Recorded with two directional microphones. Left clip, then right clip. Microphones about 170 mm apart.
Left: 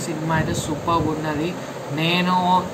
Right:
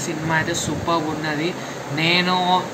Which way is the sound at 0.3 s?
10° left (ahead or behind).